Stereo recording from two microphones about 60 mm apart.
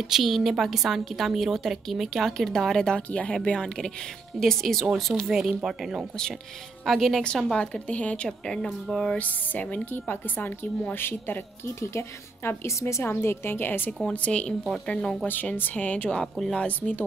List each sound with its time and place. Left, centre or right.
0.1 s a woman's voice: centre
3.1 s a woman's voice: left; by 7.2 s centre
7.5 s a woman's voice: centre
9.2 s a woman's voice: left
11.8 s a woman's voice: left
14.1 s a woman's voice: left
15.5 s a woman's voice: left
16.1 s a woman's voice: centre
16.5 s a woman's voice: left